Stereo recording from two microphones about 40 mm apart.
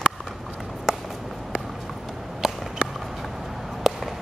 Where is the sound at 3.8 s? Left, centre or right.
Centre.